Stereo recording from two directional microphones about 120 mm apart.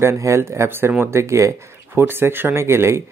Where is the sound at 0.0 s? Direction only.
25° right (ahead or behind).